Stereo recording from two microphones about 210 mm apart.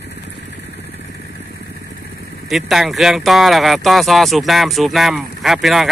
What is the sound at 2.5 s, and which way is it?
Speech, centre (ahead or behind).